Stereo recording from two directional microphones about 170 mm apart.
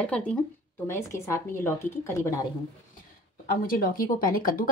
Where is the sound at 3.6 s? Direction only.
55° left (ahead or behind).